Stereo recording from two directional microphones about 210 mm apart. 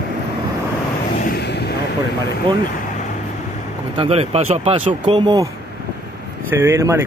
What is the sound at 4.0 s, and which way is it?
Speech, 30° right (ahead or behind).